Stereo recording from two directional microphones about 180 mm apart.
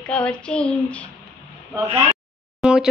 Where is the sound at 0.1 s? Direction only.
5° left (ahead or behind).